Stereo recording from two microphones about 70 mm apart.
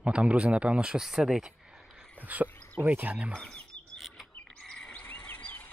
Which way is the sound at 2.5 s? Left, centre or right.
Left.